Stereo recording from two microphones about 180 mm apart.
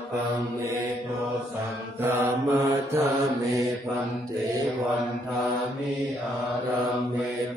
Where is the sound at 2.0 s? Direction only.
15° right (ahead or behind).